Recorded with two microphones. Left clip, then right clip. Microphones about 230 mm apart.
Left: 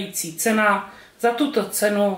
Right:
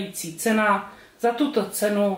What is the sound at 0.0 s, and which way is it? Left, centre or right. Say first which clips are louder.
Speech: left 3 dB; centre.